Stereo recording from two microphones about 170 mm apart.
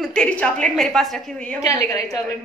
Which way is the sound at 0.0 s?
5° left (ahead or behind).